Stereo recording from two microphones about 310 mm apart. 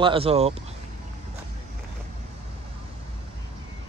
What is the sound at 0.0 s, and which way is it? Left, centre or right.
Speech, centre.